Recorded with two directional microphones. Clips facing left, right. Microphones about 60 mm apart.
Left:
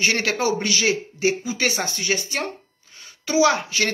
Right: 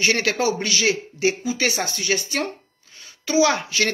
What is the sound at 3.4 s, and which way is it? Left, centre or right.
Speech, centre.